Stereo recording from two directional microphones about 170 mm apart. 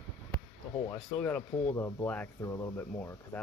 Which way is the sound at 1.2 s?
10° left (ahead or behind).